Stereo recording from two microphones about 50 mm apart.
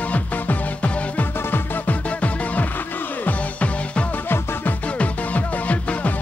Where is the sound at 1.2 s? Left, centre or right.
Left.